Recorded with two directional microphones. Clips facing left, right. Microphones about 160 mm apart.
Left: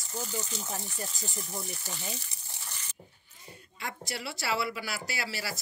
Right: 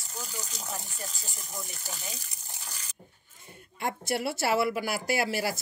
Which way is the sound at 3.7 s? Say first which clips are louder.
Right 8 dB; 50° right (ahead or behind).